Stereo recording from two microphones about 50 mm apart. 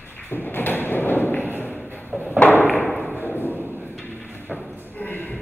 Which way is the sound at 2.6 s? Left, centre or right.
Left.